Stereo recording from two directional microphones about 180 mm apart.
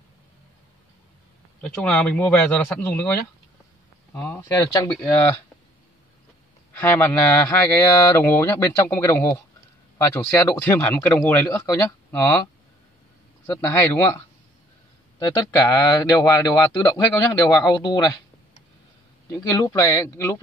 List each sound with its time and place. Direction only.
1.6 s speech: 5° left (ahead or behind)
6.8 s speech: 10° left (ahead or behind)
13.6 s speech: 10° left (ahead or behind)
15.1 s speech: 20° left (ahead or behind)
19.3 s speech: 15° left (ahead or behind)